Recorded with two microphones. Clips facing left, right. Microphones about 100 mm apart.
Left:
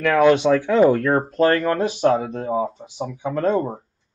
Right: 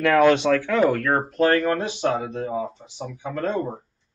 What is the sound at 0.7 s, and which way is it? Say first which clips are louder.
Speech: left 4 dB; 25° left (ahead or behind).